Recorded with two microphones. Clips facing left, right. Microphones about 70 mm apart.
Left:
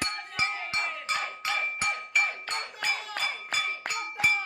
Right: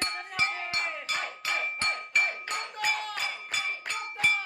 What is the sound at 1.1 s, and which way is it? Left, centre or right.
Music, left.